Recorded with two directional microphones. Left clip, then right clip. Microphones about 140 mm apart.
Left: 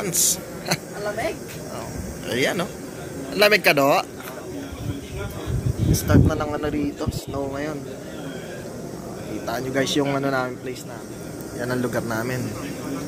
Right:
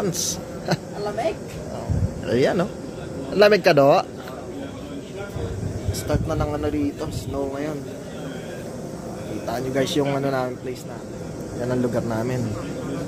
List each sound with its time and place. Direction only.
0.0 s speech: 55° right (ahead or behind)
2.2 s speech: 60° right (ahead or behind)
5.9 s speech: centre (ahead or behind)
9.5 s a man's voice: 10° right (ahead or behind)
11.6 s a man's voice: 10° right (ahead or behind)